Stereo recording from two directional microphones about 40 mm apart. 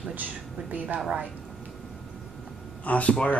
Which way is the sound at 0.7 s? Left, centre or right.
Right.